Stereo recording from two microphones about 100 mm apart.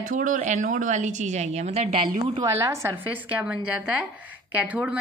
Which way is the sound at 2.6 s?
30° right (ahead or behind).